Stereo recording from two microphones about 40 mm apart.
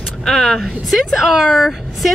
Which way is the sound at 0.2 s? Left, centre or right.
Centre.